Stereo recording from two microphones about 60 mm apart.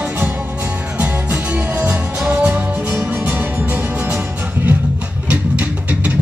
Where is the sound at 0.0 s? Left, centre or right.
Right.